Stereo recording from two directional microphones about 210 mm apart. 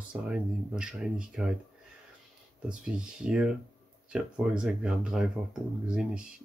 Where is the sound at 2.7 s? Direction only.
5° right (ahead or behind).